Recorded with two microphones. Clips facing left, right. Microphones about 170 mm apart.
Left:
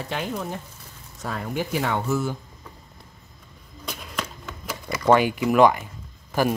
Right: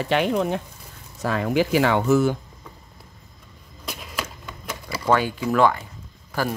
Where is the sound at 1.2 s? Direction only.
90° right.